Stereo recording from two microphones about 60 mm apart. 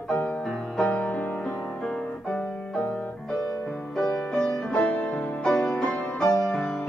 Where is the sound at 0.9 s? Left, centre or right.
Left.